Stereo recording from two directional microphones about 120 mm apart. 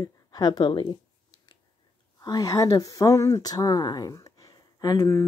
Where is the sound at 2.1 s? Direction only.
30° left (ahead or behind).